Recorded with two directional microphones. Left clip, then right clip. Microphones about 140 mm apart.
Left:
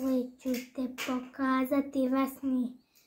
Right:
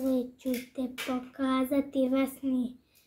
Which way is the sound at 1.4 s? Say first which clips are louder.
Even; 15° right (ahead or behind).